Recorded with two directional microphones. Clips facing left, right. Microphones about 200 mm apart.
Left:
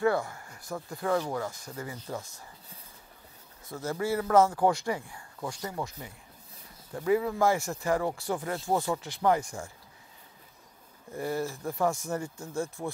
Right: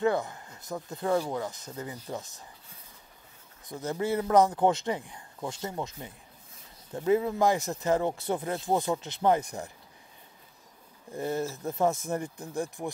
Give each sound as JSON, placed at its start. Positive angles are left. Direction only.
{"t": 0.0, "sound": "a man's voice", "side_deg": -20}
{"t": 3.6, "sound": "a man's voice", "side_deg": -20}
{"t": 11.1, "sound": "a man's voice", "side_deg": -20}